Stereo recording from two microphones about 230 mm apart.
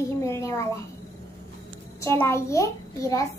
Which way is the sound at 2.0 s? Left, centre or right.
Centre.